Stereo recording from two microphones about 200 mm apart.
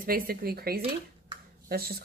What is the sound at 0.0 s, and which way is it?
Speech, 45° right (ahead or behind).